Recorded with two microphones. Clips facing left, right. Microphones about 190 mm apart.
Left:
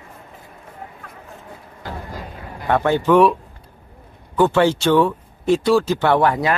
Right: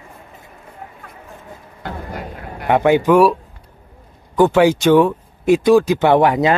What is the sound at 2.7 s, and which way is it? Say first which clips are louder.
Speech: right 3 dB; 15° right (ahead or behind).